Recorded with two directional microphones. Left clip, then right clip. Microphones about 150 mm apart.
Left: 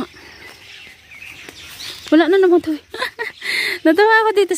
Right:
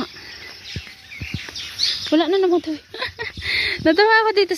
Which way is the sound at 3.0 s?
35° left (ahead or behind).